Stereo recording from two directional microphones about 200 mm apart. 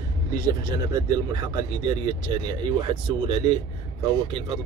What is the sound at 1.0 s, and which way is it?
Speech, 20° right (ahead or behind).